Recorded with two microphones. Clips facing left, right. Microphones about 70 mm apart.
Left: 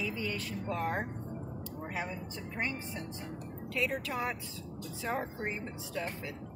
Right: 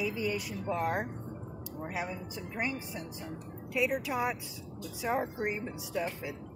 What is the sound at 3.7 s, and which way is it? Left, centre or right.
Speech, centre.